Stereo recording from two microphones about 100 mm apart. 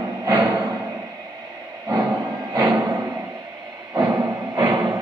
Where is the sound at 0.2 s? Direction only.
40° right (ahead or behind).